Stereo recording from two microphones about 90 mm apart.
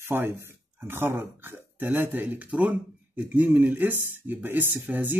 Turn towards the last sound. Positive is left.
turn(degrees=-20)  # may be behind; listen again after turning